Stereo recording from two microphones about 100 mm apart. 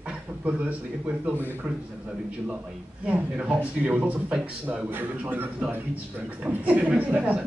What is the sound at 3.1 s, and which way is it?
A man's voice, 15° right (ahead or behind).